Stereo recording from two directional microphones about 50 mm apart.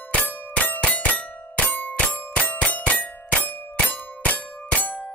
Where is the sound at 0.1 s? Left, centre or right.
Left.